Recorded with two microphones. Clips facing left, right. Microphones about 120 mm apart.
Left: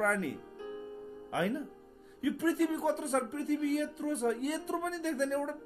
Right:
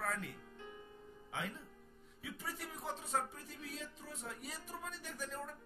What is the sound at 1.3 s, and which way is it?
Speech, 75° left (ahead or behind).